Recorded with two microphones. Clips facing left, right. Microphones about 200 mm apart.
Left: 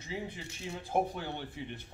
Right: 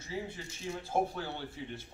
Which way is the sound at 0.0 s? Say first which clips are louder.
Even; 15° left (ahead or behind).